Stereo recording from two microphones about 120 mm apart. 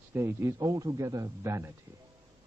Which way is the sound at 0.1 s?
20° right (ahead or behind).